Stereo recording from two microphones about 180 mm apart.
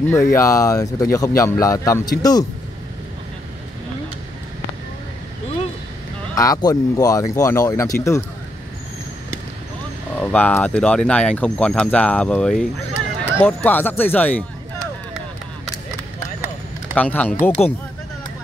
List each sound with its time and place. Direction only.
0.1 s speech: 15° left (ahead or behind)
6.3 s speech: 20° left (ahead or behind)
10.1 s speech: 10° left (ahead or behind)
16.9 s speech: 10° left (ahead or behind)